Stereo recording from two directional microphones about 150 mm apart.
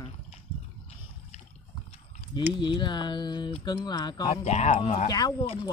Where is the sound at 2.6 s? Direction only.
30° left (ahead or behind).